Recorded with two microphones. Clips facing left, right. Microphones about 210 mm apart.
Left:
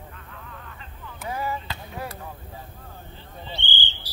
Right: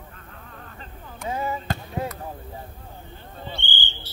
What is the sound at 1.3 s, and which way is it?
Basketball bounce, 25° right (ahead or behind).